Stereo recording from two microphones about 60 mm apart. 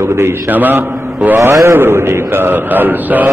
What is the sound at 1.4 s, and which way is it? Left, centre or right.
Speech, right.